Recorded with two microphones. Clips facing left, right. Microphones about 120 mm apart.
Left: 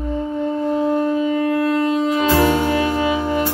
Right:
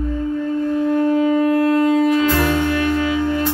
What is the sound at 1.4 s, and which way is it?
Wind instrument, 30° right (ahead or behind).